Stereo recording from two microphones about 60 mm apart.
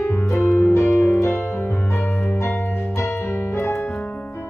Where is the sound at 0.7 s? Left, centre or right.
Left.